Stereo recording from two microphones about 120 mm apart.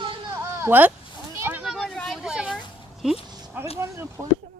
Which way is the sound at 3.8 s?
20° right (ahead or behind).